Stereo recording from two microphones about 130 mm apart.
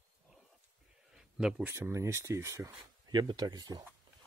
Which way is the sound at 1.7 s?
20° right (ahead or behind).